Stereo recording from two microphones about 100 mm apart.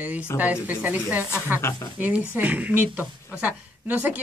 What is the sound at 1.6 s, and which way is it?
Speech, 25° left (ahead or behind).